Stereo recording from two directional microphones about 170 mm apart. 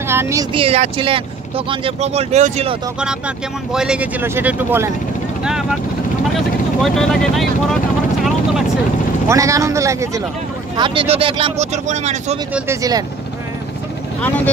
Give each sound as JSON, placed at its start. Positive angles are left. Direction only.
{"t": 0.1, "sound": "speech", "side_deg": -15}
{"t": 0.5, "sound": "speech", "side_deg": -35}
{"t": 3.0, "sound": "speech", "side_deg": -5}
{"t": 9.3, "sound": "speech", "side_deg": -20}
{"t": 10.8, "sound": "speech", "side_deg": -30}
{"t": 14.2, "sound": "speech", "side_deg": 10}